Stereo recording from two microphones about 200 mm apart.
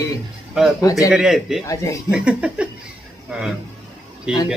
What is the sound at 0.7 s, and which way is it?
Speech, 15° left (ahead or behind).